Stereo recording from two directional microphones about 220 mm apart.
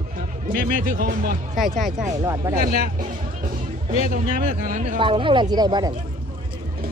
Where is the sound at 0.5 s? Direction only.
40° right (ahead or behind).